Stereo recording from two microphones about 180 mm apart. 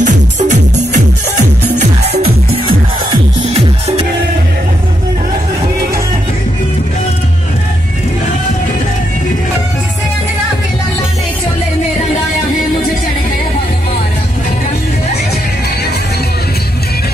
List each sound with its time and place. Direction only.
0.0 s music: 45° right (ahead or behind)
2.0 s music: 35° right (ahead or behind)